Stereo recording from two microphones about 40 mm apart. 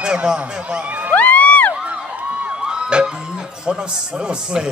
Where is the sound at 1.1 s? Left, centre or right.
Left.